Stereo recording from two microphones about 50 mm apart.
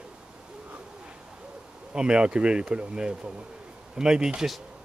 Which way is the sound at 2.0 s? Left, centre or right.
Centre.